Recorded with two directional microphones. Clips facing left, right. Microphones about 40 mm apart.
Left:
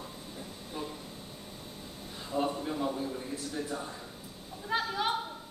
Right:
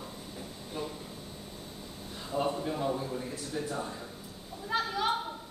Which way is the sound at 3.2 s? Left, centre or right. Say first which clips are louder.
Right 1 dB; centre.